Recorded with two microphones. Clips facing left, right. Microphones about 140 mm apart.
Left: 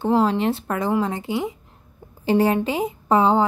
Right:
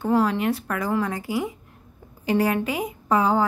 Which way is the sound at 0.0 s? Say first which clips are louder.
Left 2 dB; 25° left (ahead or behind).